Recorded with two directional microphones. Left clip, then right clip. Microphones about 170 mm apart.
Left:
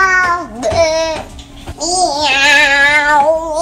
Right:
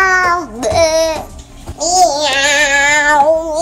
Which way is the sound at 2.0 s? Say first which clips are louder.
Left 1 dB; 20° right (ahead or behind).